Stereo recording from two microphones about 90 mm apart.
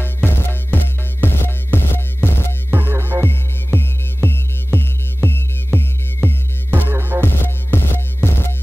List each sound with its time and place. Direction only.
0.0 s music: 25° left (ahead or behind)
2.7 s music: 25° right (ahead or behind)
3.3 s music: 25° left (ahead or behind)
6.9 s music: 25° right (ahead or behind)
7.2 s music: 25° left (ahead or behind)